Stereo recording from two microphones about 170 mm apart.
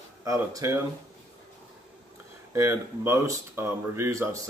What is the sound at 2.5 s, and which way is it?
Speech, 15° right (ahead or behind).